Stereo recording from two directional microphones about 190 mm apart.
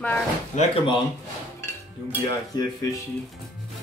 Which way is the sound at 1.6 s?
15° left (ahead or behind).